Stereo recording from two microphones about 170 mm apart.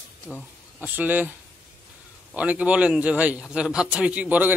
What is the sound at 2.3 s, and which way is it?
A man's voice, 10° right (ahead or behind).